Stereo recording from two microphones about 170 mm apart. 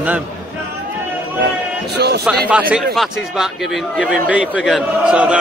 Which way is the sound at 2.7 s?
Centre (ahead or behind).